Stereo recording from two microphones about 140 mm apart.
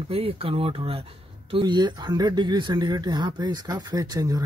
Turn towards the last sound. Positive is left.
turn(degrees=-25)  # may be behind; listen again after turning